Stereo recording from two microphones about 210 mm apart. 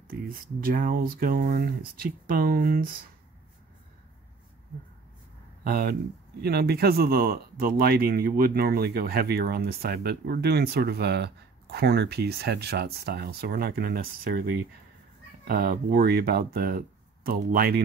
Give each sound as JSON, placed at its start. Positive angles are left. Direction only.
{"t": 0.1, "sound": "speech", "side_deg": -45}
{"t": 5.6, "sound": "speech", "side_deg": -45}